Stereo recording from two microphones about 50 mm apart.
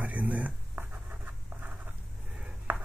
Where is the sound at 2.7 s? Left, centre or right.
Right.